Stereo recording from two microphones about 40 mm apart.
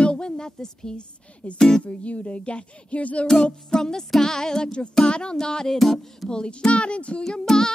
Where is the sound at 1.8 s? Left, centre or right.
Left.